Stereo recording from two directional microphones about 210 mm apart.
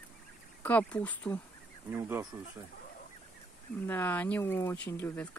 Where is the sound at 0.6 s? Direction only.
5° left (ahead or behind).